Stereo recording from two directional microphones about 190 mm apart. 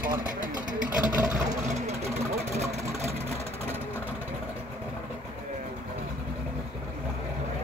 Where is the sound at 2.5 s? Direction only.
35° right (ahead or behind).